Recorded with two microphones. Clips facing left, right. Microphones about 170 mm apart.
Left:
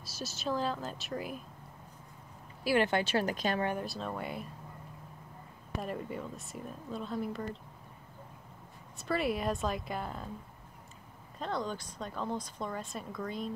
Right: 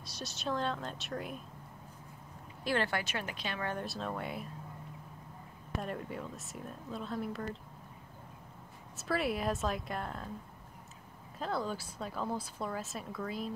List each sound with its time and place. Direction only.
0.0 s a woman's voice: centre (ahead or behind)
2.6 s speech: 10° left (ahead or behind)
2.9 s a woman's voice: 30° left (ahead or behind)
3.8 s a woman's voice: centre (ahead or behind)
5.8 s a woman's voice: centre (ahead or behind)
8.9 s a woman's voice: centre (ahead or behind)
11.3 s a woman's voice: 5° right (ahead or behind)